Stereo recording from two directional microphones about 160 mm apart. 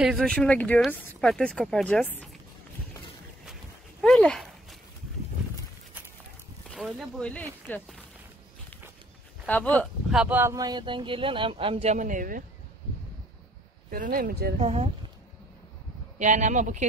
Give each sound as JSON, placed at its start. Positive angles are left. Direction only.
{"t": 0.0, "sound": "speech", "side_deg": 0}
{"t": 4.0, "sound": "dog", "side_deg": 5}
{"t": 6.7, "sound": "speech", "side_deg": 0}
{"t": 9.5, "sound": "speech", "side_deg": 10}
{"t": 10.1, "sound": "speech", "side_deg": -10}
{"t": 13.8, "sound": "speech", "side_deg": -60}
{"t": 14.6, "sound": "speech", "side_deg": -40}
{"t": 16.2, "sound": "speech", "side_deg": -50}